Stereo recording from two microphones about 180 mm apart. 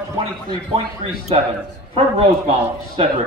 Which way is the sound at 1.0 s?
35° right (ahead or behind).